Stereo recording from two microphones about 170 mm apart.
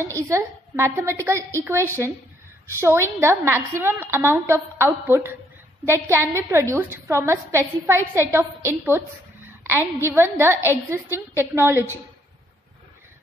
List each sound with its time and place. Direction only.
0.0 s a woman's voice: 15° right (ahead or behind)
9.6 s a sound: 10° right (ahead or behind)
10.0 s a woman's voice: 15° right (ahead or behind)